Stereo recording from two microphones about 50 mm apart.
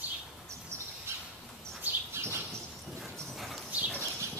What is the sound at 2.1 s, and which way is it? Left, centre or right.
Bird, right.